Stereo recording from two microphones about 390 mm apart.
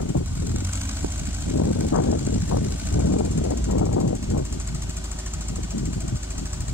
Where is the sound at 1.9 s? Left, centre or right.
Left.